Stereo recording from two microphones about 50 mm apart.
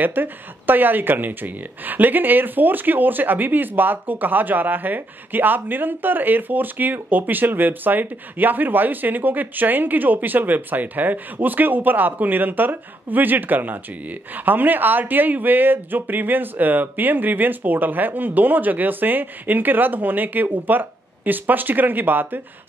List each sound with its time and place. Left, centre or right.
0.0 s speech: right